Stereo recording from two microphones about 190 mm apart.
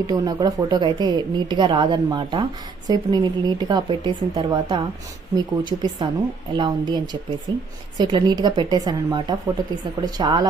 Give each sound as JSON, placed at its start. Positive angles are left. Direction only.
{"t": 0.0, "sound": "speech", "side_deg": -20}